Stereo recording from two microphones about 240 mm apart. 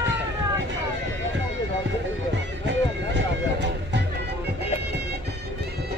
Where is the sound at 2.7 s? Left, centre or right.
Right.